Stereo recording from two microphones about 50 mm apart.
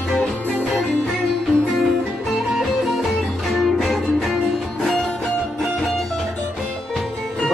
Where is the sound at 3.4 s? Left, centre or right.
Centre.